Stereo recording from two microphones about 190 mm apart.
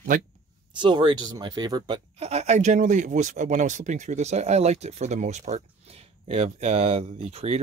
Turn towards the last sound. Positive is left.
turn(degrees=-30)  # may be behind; listen again after turning